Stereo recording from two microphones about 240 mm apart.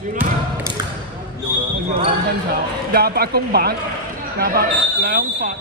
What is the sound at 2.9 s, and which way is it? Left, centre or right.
Speech, right.